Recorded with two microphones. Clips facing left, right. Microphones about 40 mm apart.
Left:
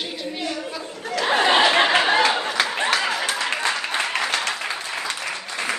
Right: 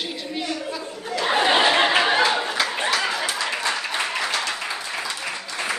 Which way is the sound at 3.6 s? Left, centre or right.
Centre.